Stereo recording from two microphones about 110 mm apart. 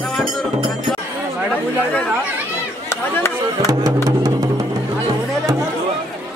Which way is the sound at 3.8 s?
35° right (ahead or behind).